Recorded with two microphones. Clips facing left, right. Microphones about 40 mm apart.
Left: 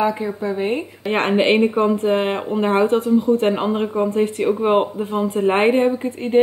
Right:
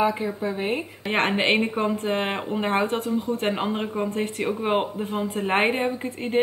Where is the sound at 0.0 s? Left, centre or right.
Centre.